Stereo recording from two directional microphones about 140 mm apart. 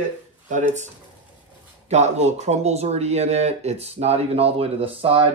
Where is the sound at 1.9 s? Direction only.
55° right (ahead or behind).